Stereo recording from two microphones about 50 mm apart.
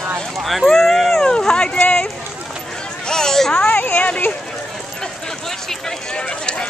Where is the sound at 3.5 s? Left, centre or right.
Left.